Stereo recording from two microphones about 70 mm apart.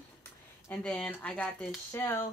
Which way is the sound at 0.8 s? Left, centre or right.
Centre.